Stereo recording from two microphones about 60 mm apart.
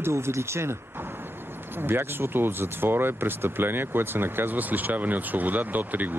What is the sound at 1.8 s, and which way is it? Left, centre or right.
Speech, right.